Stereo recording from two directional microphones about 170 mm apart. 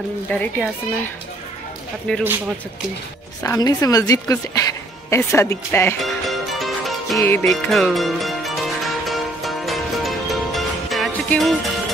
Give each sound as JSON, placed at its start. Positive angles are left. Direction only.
{"t": 0.3, "sound": "speech", "side_deg": 10}
{"t": 3.4, "sound": "a woman's voice", "side_deg": 20}
{"t": 6.0, "sound": "music", "side_deg": 0}
{"t": 7.2, "sound": "speech", "side_deg": 15}
{"t": 7.4, "sound": "music", "side_deg": 0}